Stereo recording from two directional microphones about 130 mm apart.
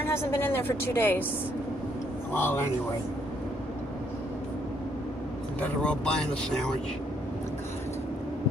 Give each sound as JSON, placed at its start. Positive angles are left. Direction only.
{"t": 0.0, "sound": "a woman's voice", "side_deg": 20}
{"t": 2.3, "sound": "a woman's voice", "side_deg": 15}
{"t": 5.6, "sound": "a woman's voice", "side_deg": 10}